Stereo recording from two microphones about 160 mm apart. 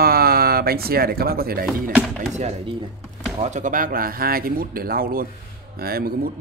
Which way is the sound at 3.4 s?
50° right (ahead or behind).